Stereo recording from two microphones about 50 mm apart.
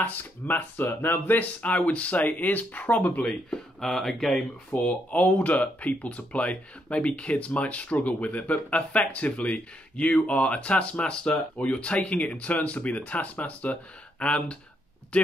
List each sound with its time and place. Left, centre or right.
0.1 s speech: left
3.8 s speech: centre
4.6 s speech: left